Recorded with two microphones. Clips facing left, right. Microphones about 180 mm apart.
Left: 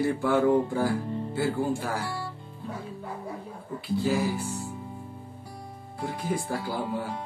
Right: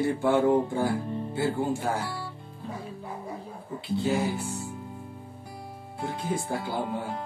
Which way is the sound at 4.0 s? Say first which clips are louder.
Even; 25° right (ahead or behind).